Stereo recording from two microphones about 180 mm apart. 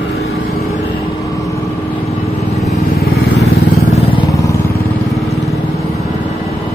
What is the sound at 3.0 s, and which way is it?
Vehicle, 60° left (ahead or behind).